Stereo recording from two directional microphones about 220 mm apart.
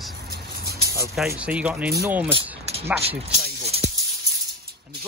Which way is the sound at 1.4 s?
5° right (ahead or behind).